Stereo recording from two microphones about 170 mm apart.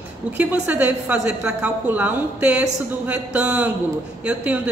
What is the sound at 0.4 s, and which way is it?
A woman's voice, 10° right (ahead or behind).